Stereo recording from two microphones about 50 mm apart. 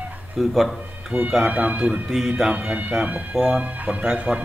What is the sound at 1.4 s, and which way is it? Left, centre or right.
Speech, right.